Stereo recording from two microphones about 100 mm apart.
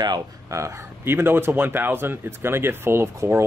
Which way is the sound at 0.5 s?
30° right (ahead or behind).